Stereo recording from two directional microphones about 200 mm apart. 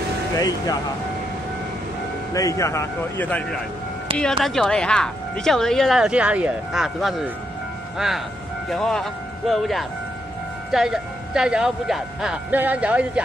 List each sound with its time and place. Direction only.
0.4 s speech: 20° left (ahead or behind)
2.3 s speech: 15° left (ahead or behind); by 7.2 s centre (ahead or behind)
8.6 s speech: centre (ahead or behind)